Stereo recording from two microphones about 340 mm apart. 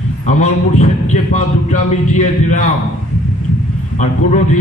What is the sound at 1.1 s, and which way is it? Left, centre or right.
A man's voice, left.